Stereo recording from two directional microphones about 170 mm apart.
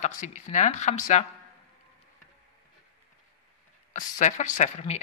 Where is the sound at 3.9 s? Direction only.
45° left (ahead or behind).